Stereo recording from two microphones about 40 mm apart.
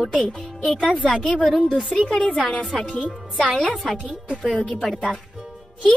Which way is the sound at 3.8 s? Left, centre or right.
Centre.